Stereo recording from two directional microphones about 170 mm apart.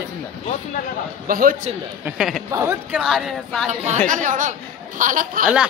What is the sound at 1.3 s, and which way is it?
Speech, 55° right (ahead or behind).